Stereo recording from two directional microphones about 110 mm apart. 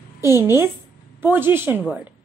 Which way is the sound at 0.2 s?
25° right (ahead or behind).